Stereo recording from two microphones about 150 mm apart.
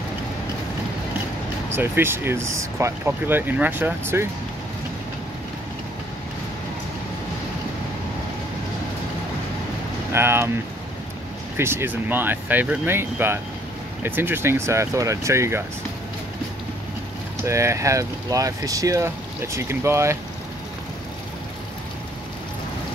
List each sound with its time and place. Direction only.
1.8 s speech: 15° right (ahead or behind)
10.1 s speech: 15° right (ahead or behind)
11.5 s speech: 15° right (ahead or behind)
17.4 s speech: 20° right (ahead or behind)